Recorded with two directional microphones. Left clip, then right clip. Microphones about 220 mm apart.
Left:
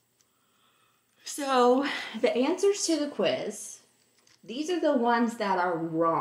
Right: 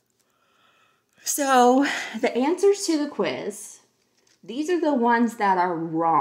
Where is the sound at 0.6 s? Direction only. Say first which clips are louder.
Right 6 dB; 50° right (ahead or behind).